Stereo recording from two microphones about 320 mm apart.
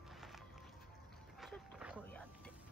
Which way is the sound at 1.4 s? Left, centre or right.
Centre.